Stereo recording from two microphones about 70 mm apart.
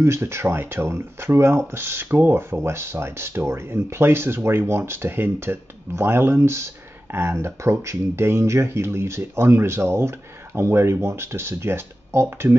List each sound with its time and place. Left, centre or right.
0.0 s speech: right